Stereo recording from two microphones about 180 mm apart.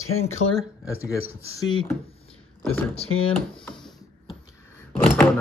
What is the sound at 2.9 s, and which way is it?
Speech, 35° left (ahead or behind).